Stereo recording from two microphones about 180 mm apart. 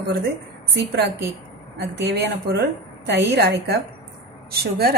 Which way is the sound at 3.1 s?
70° right (ahead or behind).